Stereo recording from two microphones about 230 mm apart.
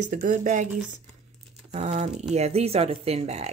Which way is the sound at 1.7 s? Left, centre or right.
Right.